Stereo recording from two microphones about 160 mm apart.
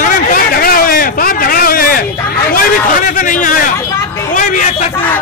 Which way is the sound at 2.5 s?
60° left (ahead or behind).